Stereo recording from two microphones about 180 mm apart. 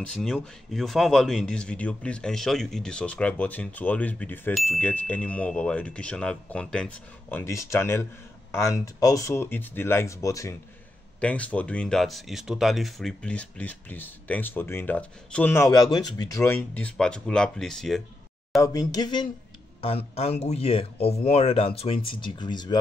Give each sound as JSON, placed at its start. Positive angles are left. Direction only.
{"t": 0.2, "sound": "speech", "side_deg": 0}
{"t": 11.1, "sound": "speech", "side_deg": 5}
{"t": 18.6, "sound": "speech", "side_deg": 20}